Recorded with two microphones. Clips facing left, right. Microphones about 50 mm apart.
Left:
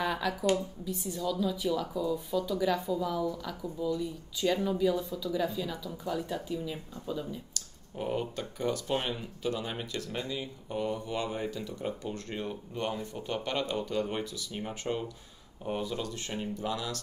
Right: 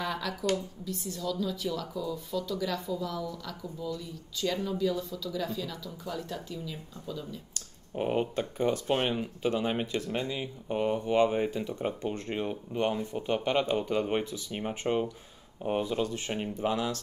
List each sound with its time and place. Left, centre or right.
0.0 s speech: centre
7.5 s speech: right